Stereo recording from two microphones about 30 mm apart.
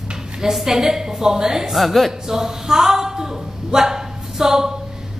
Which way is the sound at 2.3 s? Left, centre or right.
Centre.